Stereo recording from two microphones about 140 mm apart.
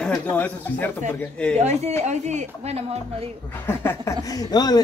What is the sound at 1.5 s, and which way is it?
Speech, 55° right (ahead or behind).